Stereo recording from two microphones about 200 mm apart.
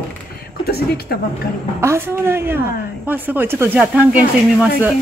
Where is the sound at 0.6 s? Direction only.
50° left (ahead or behind).